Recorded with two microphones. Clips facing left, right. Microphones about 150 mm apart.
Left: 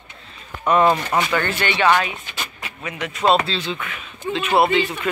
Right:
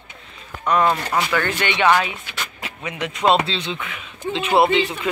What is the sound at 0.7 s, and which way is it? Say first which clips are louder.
Speech: left 2 dB; 5° left (ahead or behind).